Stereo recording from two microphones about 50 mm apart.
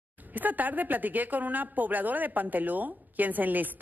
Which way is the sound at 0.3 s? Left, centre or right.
Right.